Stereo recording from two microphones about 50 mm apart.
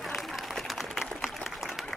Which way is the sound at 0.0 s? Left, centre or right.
Centre.